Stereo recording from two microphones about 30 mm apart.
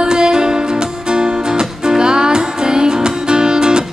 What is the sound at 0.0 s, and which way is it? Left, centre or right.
Music, right.